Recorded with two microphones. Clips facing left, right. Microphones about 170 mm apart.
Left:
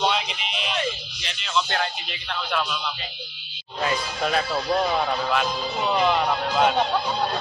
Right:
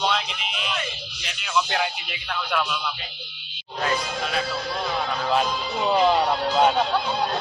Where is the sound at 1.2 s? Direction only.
10° right (ahead or behind).